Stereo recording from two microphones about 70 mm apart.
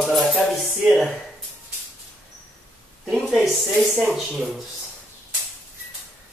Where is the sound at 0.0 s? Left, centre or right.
Centre.